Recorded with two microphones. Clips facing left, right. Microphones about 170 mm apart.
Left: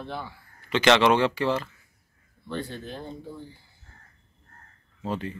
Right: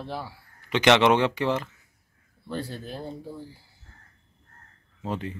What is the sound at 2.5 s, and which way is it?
Speech, 35° right (ahead or behind).